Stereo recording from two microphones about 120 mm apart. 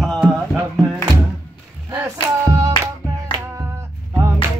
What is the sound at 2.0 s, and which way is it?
Music, 25° right (ahead or behind).